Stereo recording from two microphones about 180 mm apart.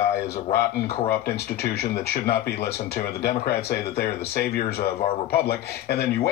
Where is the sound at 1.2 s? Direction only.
60° left (ahead or behind).